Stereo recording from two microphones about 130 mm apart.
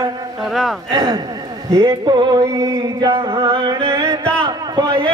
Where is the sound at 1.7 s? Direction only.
25° right (ahead or behind).